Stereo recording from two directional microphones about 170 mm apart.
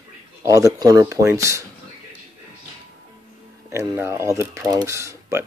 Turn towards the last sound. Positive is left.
turn(degrees=-15)  # may be behind; listen again after turning